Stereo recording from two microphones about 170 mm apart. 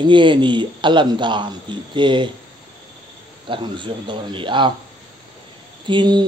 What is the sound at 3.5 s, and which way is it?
Speech, 30° right (ahead or behind).